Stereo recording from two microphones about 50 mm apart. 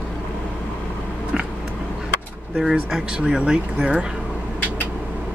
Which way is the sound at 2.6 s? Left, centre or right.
Centre.